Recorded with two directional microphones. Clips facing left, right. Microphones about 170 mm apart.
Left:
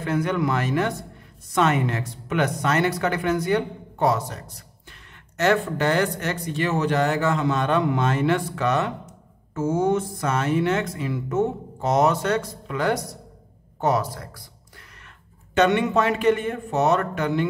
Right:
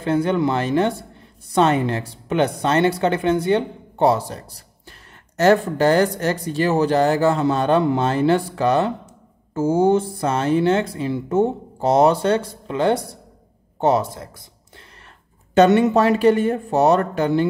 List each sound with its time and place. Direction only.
0.0 s speech: 30° right (ahead or behind)
15.5 s speech: 35° right (ahead or behind)